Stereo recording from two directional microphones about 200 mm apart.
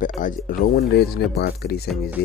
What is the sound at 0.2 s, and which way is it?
Speech, 50° left (ahead or behind).